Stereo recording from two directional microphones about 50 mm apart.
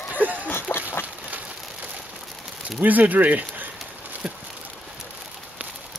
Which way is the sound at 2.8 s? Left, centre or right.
Right.